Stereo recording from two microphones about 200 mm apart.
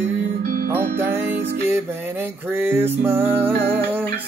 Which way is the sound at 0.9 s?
10° right (ahead or behind).